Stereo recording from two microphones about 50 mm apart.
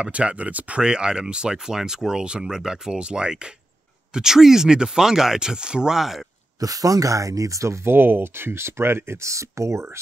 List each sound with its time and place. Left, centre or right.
0.0 s speech: right
0.8 s speech: centre
5.9 s speech: centre
7.1 s speech: right
7.8 s speech: right